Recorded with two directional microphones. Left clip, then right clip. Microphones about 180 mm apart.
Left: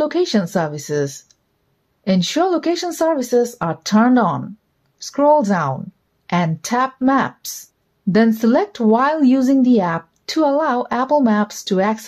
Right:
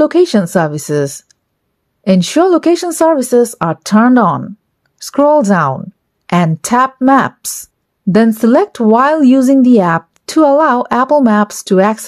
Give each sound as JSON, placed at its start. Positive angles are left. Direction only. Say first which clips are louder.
{"t": 0.0, "sound": "speech", "louder": "right 8 dB", "side_deg": -35}